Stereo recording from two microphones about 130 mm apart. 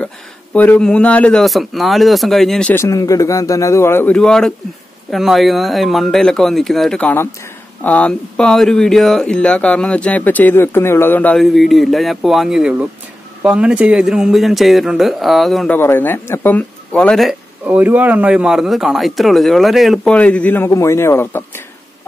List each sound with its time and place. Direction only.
0.0 s speech: 10° left (ahead or behind)
2.7 s a man's voice: 25° left (ahead or behind)
11.3 s speech: centre (ahead or behind)
15.7 s speech: 15° left (ahead or behind)
17.6 s speech: 10° right (ahead or behind)
20.1 s speech: 10° left (ahead or behind)